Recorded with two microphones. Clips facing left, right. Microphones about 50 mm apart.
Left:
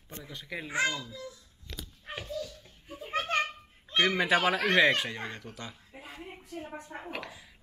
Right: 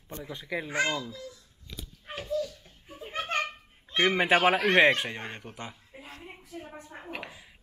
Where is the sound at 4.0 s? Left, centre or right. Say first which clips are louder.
Right 3 dB; right.